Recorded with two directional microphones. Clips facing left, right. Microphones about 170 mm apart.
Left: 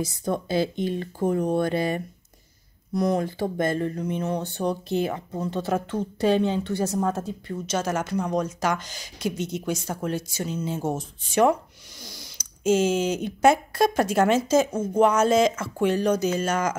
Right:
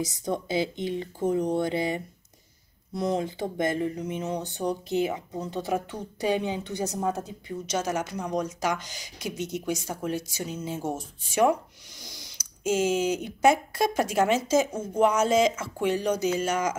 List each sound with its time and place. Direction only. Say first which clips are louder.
0.0 s a woman's voice: left 2 dB; 20° right (ahead or behind)